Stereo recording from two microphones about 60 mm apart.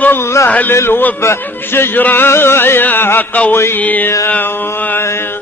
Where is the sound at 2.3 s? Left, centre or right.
Left.